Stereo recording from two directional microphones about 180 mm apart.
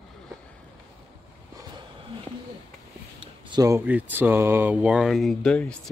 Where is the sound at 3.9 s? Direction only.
10° right (ahead or behind).